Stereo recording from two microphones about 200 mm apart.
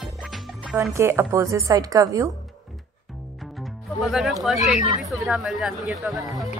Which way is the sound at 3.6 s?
Centre (ahead or behind).